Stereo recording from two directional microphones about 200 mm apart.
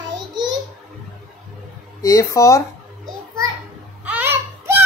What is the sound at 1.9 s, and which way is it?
Speech, 15° left (ahead or behind).